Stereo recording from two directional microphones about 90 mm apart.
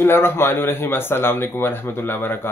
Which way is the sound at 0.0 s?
25° left (ahead or behind).